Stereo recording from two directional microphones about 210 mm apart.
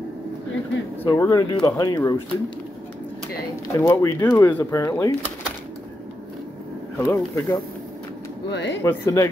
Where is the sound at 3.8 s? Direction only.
15° left (ahead or behind).